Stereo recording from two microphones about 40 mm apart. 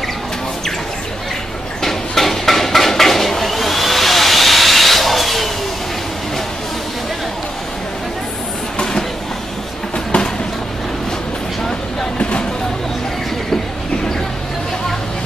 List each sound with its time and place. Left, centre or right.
1.8 s hammer: centre
8.7 s train: centre
10.1 s vehicle: left
12.2 s a sound: left